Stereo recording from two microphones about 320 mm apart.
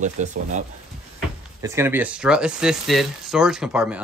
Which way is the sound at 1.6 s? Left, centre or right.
Centre.